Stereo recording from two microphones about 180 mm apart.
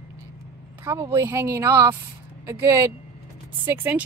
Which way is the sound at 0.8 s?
15° right (ahead or behind).